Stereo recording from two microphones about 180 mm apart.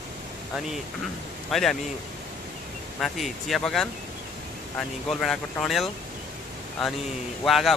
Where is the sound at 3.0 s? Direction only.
Centre (ahead or behind).